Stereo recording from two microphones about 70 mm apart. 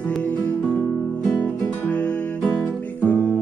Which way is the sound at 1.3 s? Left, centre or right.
Left.